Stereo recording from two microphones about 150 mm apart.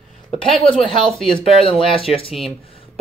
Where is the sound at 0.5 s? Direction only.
Centre (ahead or behind).